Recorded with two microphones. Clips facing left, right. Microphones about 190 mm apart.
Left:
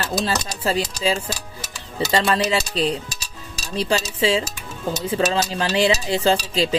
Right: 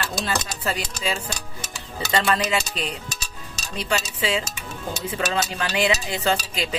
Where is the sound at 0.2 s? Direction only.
30° left (ahead or behind).